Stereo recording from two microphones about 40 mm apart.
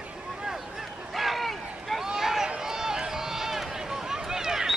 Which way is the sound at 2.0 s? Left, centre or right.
Centre.